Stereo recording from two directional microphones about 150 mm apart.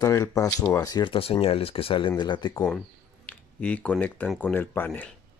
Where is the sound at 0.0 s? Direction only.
20° left (ahead or behind).